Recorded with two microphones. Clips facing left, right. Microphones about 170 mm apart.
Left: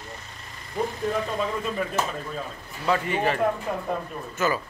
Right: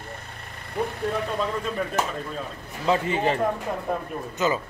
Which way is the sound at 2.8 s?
25° right (ahead or behind).